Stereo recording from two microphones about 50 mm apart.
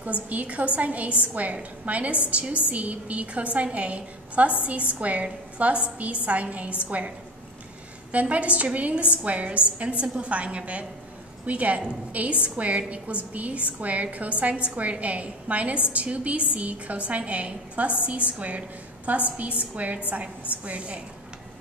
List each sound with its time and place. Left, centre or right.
0.0 s a woman's voice: right
8.1 s a woman's voice: right